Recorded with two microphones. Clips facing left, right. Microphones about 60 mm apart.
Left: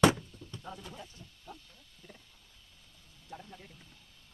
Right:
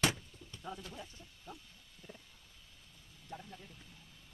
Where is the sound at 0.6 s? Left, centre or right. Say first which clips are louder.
Right 1 dB; centre.